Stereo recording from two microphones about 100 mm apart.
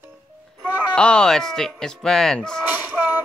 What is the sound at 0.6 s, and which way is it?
Speech, 10° left (ahead or behind).